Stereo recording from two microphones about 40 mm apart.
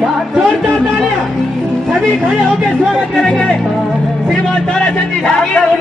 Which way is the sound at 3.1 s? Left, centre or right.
Centre.